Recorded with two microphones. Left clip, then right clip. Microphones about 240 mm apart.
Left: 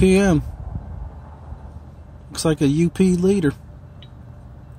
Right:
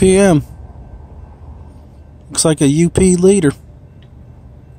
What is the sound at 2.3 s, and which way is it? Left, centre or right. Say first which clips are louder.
Speech: right 6 dB; right.